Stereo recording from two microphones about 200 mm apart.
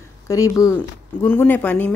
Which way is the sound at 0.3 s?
15° left (ahead or behind).